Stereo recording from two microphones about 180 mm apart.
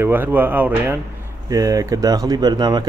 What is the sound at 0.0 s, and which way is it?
Speech, 10° right (ahead or behind).